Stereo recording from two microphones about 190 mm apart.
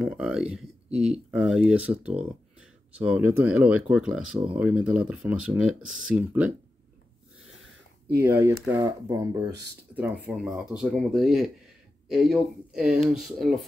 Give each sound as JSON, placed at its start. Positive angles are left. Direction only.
{"t": 0.0, "sound": "speech", "side_deg": -5}
{"t": 8.2, "sound": "speech", "side_deg": -15}